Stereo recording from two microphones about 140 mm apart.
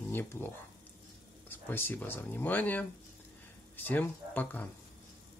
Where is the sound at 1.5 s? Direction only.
15° left (ahead or behind).